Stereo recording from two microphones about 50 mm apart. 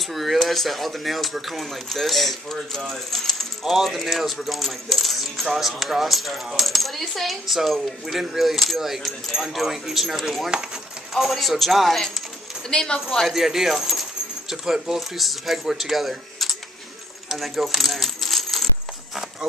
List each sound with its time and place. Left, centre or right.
0.0 s speech: centre
12.6 s a woman's voice: centre
13.3 s speech: centre
17.3 s coin: centre